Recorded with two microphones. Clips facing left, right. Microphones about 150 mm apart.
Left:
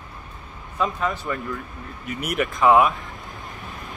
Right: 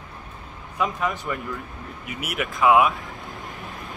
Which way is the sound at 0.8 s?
15° right (ahead or behind).